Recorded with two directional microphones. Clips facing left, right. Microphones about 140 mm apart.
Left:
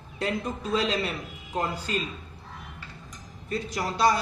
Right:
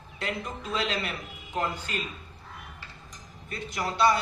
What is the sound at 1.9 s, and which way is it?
Speech, 30° left (ahead or behind).